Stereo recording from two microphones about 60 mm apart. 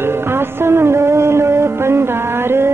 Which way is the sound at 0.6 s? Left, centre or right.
Right.